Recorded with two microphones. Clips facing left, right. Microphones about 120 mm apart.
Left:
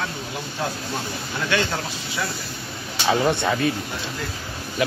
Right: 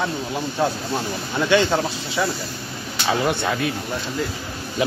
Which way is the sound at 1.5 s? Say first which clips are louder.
Right 7 dB; 25° right (ahead or behind).